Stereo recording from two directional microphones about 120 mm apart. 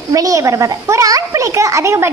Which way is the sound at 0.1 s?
30° right (ahead or behind).